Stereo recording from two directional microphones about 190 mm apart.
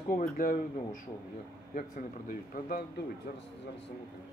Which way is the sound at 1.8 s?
45° left (ahead or behind).